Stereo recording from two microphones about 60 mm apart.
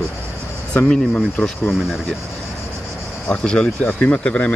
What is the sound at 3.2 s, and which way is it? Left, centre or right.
Speech, centre.